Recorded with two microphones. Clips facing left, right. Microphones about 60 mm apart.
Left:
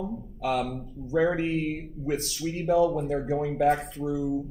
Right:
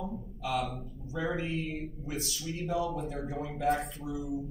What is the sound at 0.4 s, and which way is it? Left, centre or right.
A man's voice, left.